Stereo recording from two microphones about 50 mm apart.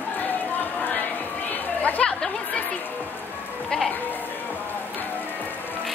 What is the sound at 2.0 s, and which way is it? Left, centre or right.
Chatter, centre.